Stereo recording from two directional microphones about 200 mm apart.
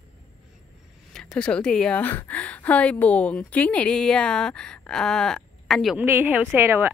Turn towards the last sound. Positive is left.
turn(degrees=-10)  # may be behind; listen again after turning